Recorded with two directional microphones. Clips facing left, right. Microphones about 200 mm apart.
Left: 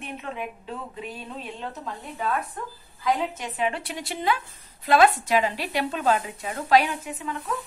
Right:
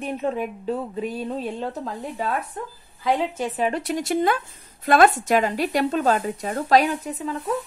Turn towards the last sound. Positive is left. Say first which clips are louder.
# right 5 dB
turn(degrees=-35)  # may be behind; listen again after turning